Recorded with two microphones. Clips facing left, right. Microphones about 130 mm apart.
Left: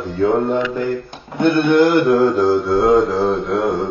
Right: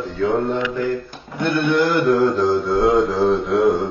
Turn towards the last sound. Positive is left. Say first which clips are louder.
# right 1 dB
turn(degrees=0)  # may be behind; listen again after turning